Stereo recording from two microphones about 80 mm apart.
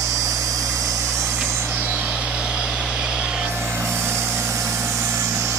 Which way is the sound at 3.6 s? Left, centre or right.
Right.